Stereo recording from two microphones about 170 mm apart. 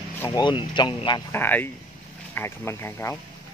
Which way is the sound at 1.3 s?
10° left (ahead or behind).